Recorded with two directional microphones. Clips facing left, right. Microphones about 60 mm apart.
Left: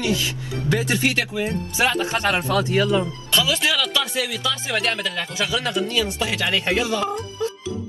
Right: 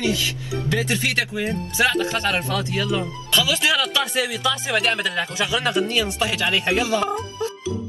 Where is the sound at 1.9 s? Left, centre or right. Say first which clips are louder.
Left 1 dB; left.